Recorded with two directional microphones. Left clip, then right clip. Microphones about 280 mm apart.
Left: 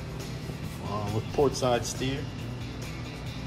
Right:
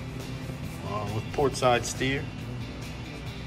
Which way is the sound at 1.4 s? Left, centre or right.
Centre.